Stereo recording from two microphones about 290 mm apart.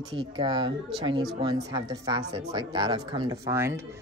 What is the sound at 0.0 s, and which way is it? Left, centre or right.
A woman's voice, centre.